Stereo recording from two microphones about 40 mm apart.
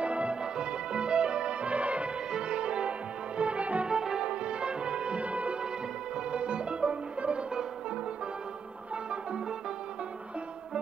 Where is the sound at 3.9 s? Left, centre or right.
Centre.